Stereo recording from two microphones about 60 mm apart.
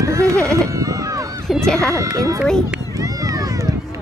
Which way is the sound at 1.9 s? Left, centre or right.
Right.